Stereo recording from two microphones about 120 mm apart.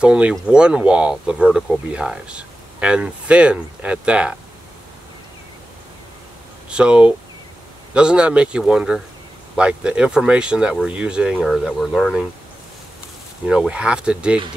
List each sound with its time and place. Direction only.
0.0 s speech: 10° right (ahead or behind)
6.7 s speech: 10° right (ahead or behind)
13.5 s speech: 10° right (ahead or behind)